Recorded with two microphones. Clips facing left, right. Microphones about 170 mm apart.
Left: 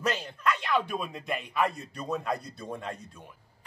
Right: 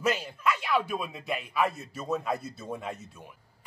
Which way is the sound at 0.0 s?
5° right (ahead or behind).